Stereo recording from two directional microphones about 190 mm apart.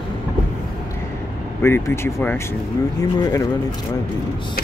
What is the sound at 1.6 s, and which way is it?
Speech, 15° left (ahead or behind).